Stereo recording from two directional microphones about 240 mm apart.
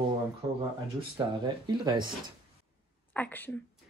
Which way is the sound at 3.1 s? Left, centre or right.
Centre.